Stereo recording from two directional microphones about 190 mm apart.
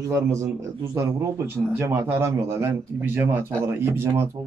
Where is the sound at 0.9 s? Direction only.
15° right (ahead or behind).